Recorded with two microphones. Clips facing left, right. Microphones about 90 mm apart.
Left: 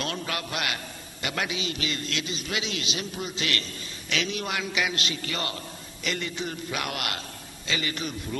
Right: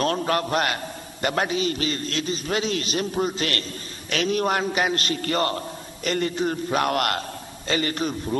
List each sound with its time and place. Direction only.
0.0 s a man's voice: 40° right (ahead or behind)